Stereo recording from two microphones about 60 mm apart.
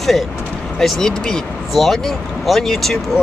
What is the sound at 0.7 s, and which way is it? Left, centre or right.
Speech, centre.